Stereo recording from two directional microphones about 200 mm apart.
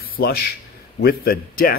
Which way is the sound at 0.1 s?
50° left (ahead or behind).